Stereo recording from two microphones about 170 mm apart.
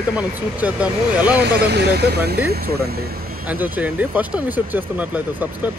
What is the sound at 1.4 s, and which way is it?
Speech, 75° right (ahead or behind).